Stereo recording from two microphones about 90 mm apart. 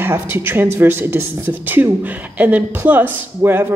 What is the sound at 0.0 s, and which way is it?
Speech, 25° right (ahead or behind).